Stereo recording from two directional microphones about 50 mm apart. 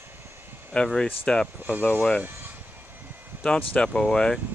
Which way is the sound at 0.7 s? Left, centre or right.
Centre.